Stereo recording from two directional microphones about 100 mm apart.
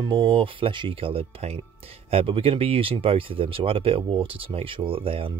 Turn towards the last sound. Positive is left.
turn(degrees=-65)  # may be behind; listen again after turning